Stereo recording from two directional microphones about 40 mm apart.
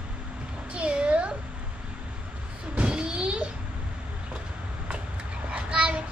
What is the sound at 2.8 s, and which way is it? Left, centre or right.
Vehicle, right.